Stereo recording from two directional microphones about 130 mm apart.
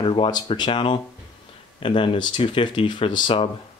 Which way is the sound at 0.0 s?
40° left (ahead or behind).